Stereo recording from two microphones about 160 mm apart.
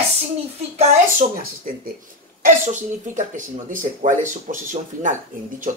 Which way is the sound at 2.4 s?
50° right (ahead or behind).